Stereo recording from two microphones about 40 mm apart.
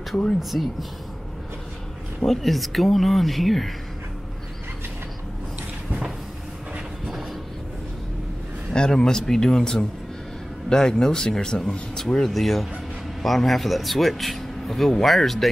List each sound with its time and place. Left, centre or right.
0.4 s speech: centre
2.2 s speech: centre
8.7 s speech: centre
12.3 s speech: centre